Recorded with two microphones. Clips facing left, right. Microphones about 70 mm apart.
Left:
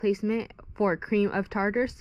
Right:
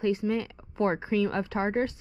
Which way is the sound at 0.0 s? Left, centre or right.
Left.